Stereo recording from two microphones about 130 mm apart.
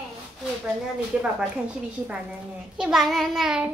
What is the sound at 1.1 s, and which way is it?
Speech, 10° right (ahead or behind).